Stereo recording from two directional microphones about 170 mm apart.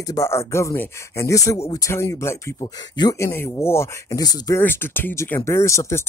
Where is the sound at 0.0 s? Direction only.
20° left (ahead or behind).